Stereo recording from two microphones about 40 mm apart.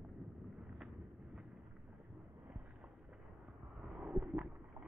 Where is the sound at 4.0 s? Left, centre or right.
Right.